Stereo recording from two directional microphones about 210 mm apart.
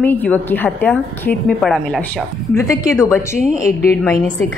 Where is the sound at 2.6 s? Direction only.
15° left (ahead or behind).